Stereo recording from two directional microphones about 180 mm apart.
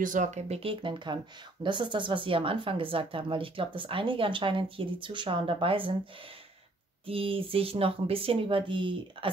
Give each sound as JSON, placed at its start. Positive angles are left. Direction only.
{"t": 0.0, "sound": "speech", "side_deg": -45}
{"t": 7.1, "sound": "speech", "side_deg": -30}